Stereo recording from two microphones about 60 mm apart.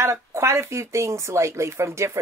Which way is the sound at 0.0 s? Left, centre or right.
Right.